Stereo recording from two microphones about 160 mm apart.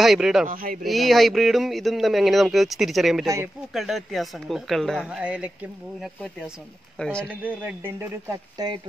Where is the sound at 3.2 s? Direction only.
20° right (ahead or behind).